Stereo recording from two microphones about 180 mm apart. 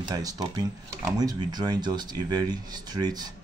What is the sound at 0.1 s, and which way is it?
Speech, 20° right (ahead or behind).